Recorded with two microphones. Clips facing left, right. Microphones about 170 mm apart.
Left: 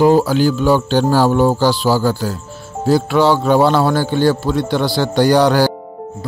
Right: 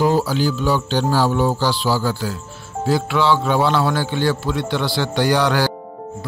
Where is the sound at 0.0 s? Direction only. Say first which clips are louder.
Left 6 dB; 50° left (ahead or behind).